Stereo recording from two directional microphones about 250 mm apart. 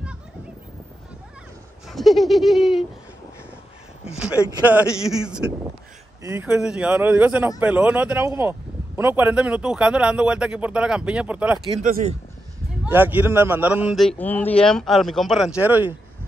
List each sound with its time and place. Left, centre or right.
1.9 s speech: centre
4.5 s speech: centre
11.8 s speech: right
12.8 s speech: centre